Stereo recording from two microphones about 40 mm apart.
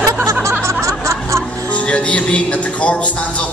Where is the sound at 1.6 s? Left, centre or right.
Left.